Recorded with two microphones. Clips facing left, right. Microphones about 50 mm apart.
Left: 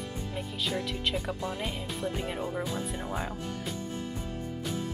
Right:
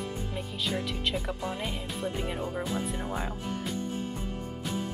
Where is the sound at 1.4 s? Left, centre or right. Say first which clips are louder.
Even; centre.